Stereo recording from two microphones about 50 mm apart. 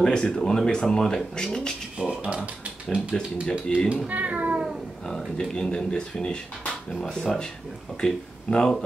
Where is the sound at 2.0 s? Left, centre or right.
Right.